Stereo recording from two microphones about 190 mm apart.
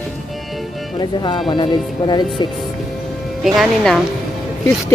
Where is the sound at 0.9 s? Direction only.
25° left (ahead or behind).